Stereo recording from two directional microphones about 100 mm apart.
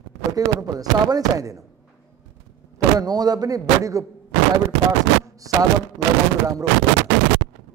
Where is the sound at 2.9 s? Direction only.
40° right (ahead or behind).